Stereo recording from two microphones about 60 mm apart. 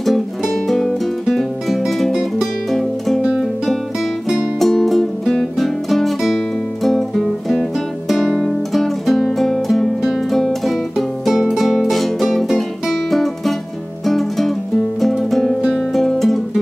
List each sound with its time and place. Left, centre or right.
0.0 s music: centre
2.1 s music: centre
2.7 s music: centre